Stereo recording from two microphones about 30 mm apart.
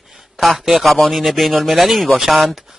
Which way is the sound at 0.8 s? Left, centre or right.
Centre.